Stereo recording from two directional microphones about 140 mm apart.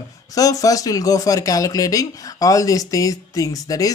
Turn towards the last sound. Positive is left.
turn(degrees=25)  # may be behind; listen again after turning